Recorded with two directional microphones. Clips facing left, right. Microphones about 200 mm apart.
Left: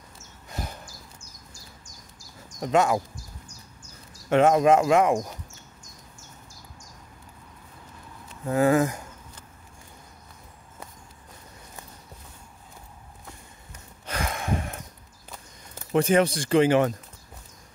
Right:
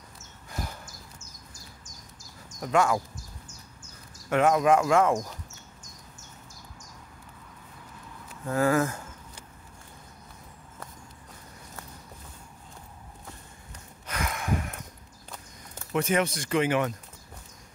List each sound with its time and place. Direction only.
0.5 s a sound: 20° left (ahead or behind)
2.6 s speech: 20° left (ahead or behind)
4.3 s speech: 25° left (ahead or behind)
8.5 s speech: 20° left (ahead or behind)
14.0 s gasp: 30° left (ahead or behind)
15.9 s speech: 30° left (ahead or behind)